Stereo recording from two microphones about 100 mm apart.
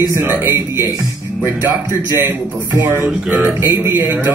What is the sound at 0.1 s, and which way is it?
Speech, 20° right (ahead or behind).